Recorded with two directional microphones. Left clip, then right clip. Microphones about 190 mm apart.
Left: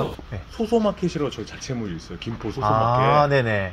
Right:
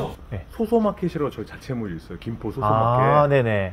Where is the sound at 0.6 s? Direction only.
35° right (ahead or behind).